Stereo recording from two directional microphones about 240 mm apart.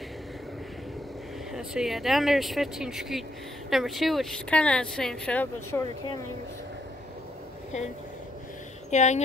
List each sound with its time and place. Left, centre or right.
1.5 s speech: centre
8.9 s a woman's voice: left